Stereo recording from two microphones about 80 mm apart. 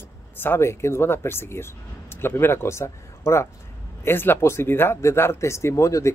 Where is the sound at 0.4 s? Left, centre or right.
Left.